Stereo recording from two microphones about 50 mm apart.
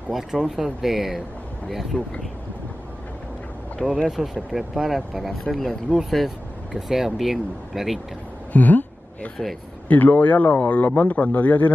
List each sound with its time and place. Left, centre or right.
0.1 s speech: centre
3.8 s speech: centre
4.2 s speech: centre
8.5 s a sound: left
9.8 s a man's voice: left